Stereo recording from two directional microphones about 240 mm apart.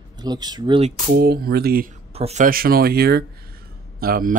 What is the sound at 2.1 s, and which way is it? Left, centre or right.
Speech, right.